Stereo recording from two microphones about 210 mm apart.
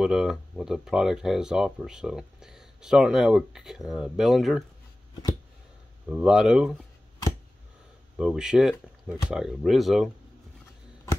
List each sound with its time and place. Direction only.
0.0 s speech: centre (ahead or behind)
6.0 s speech: 5° right (ahead or behind)
8.2 s speech: 5° right (ahead or behind)